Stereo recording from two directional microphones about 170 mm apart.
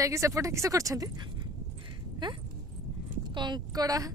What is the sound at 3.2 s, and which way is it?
Speech, 25° right (ahead or behind).